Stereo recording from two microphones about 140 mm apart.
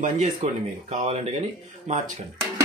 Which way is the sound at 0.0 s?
55° right (ahead or behind).